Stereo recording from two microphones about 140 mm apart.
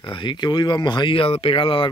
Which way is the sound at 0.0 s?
35° left (ahead or behind).